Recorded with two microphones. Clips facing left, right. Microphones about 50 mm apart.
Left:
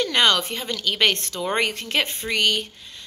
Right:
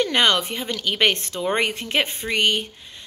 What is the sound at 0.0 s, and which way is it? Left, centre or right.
A woman's voice, right.